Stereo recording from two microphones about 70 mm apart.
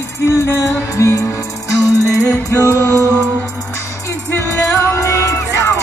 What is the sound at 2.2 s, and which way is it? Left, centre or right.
Music, left.